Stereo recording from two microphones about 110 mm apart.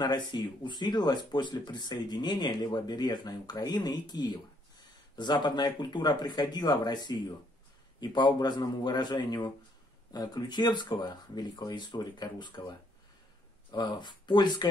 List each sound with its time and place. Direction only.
0.0 s speech: 40° left (ahead or behind)
10.1 s speech: 35° left (ahead or behind)